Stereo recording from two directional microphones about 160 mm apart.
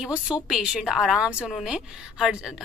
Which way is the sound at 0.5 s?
5° right (ahead or behind).